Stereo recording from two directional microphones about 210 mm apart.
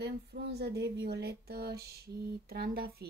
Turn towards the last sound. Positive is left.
turn(degrees=-45)  # may be behind; listen again after turning